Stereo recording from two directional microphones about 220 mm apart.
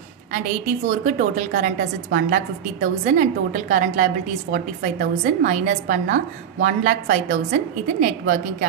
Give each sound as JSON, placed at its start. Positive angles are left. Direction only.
{"t": 0.8, "sound": "a woman's voice", "side_deg": -35}